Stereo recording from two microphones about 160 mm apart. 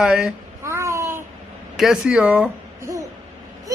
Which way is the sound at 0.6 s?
15° right (ahead or behind).